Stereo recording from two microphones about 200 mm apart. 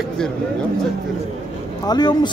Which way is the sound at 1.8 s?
20° left (ahead or behind).